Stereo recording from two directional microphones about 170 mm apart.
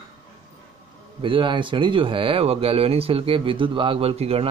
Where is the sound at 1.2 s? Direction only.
30° right (ahead or behind).